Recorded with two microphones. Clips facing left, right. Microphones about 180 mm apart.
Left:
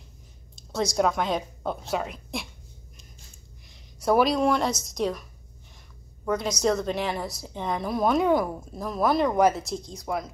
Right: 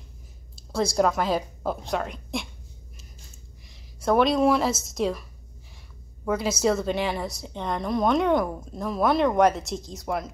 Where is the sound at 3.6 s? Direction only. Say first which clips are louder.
Even; centre (ahead or behind).